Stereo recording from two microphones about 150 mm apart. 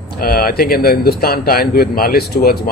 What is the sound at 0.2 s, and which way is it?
Speech, 80° left.